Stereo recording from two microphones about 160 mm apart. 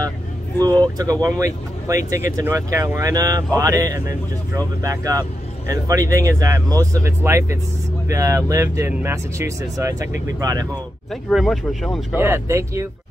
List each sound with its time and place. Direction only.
0.6 s speech: 25° right (ahead or behind)
11.2 s speech: centre (ahead or behind)
12.1 s speech: 15° right (ahead or behind)